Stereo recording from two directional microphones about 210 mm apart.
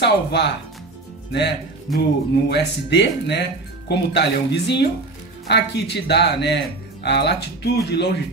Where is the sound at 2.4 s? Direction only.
55° left (ahead or behind).